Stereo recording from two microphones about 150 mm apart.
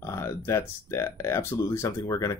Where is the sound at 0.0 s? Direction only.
20° left (ahead or behind).